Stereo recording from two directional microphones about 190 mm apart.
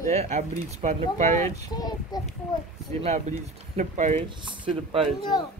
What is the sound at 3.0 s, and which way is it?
Speech, 40° right (ahead or behind).